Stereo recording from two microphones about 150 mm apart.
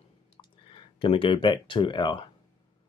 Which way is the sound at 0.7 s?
35° left (ahead or behind).